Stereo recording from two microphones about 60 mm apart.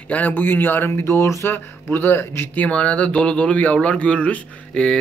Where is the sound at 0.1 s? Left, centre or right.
Left.